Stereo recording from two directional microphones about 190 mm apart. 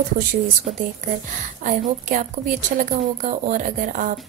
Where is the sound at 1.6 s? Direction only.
40° right (ahead or behind).